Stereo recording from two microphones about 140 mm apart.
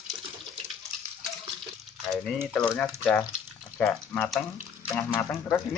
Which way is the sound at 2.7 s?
10° left (ahead or behind).